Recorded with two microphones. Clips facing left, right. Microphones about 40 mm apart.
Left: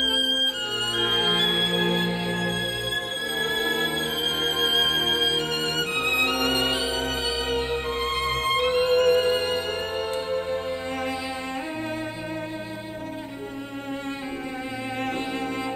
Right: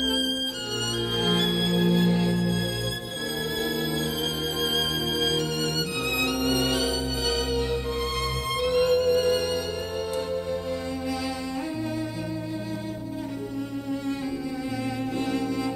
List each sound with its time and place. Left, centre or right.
0.0 s violin: left
0.9 s music: left
3.5 s music: left
5.2 s music: left